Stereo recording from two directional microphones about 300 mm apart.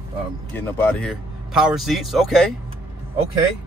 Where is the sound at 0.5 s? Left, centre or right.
Centre.